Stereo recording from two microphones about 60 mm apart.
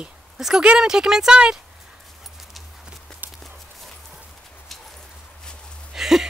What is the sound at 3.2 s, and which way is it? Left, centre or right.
Horse, right.